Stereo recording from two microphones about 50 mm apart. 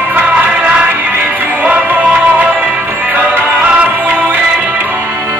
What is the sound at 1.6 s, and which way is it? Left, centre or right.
Music, right.